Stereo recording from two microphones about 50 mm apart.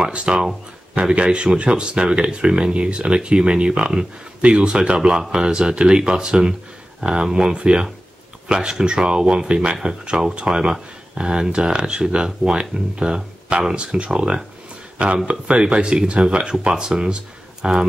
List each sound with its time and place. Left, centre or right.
0.0 s speech: right